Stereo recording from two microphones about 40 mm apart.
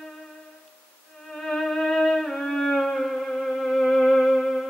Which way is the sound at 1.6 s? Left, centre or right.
Centre.